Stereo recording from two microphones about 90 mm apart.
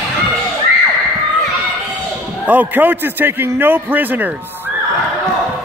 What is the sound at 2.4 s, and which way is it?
A man's voice, 20° right (ahead or behind).